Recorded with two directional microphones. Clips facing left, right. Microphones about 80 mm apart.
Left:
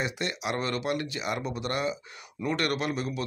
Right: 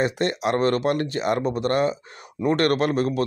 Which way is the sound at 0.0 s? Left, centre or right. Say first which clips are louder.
Right 9 dB; right.